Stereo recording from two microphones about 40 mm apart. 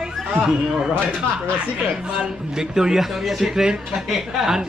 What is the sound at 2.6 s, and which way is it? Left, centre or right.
A man's voice, centre.